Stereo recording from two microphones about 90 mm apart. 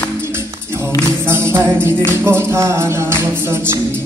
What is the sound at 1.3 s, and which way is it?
Music, 25° right (ahead or behind).